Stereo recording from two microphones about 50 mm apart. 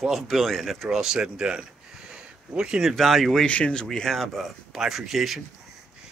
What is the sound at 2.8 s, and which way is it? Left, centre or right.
Speech, centre.